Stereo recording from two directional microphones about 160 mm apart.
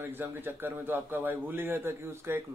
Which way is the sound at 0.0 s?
15° right (ahead or behind).